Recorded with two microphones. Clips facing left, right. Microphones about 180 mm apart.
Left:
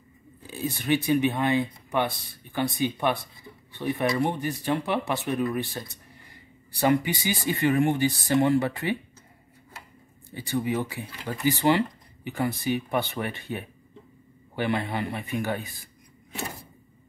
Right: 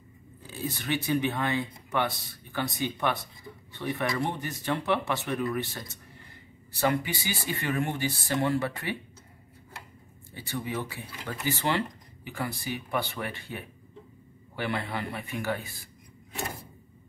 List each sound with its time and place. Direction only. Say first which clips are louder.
0.5 s speech: left 6 dB; 15° left (ahead or behind)
10.3 s speech: left 6 dB; 15° left (ahead or behind)